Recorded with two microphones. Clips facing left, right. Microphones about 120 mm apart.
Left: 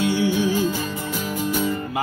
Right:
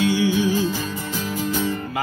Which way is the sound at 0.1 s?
50° left (ahead or behind).